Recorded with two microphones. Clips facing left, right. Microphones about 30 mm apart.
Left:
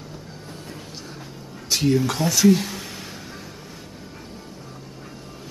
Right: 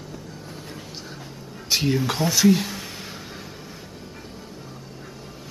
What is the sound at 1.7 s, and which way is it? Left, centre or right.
Speech, centre.